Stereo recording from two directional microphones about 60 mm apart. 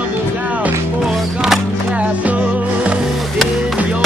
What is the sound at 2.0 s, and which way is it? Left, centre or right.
Music, right.